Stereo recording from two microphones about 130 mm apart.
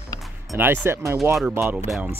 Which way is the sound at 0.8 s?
20° right (ahead or behind).